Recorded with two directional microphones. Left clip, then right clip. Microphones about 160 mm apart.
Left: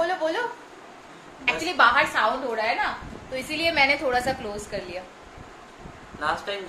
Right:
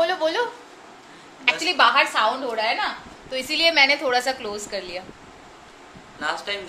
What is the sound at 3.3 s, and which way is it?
A woman's voice, 25° right (ahead or behind).